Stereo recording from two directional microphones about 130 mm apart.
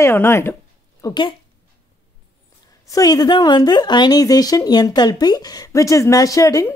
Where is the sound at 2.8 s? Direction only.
30° left (ahead or behind).